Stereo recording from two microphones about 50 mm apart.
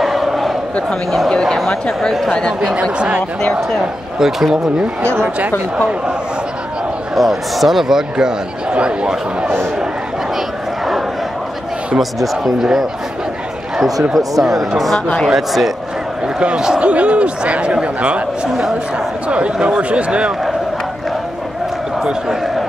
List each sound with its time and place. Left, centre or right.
0.0 s crowd: centre
2.0 s speech: centre
2.6 s a man's voice: centre
4.2 s speech: centre
5.0 s speech: right
7.2 s speech: centre; by 9.5 s right
12.0 s speech: centre
14.1 s a man's voice: centre; by 20.3 s right